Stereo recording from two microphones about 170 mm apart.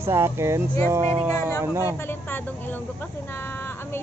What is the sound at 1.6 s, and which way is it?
Speech, 15° right (ahead or behind).